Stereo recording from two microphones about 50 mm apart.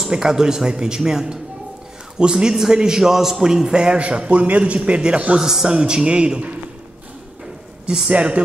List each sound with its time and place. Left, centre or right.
0.0 s a man's voice: centre
5.4 s a man's voice: centre
8.1 s speech: right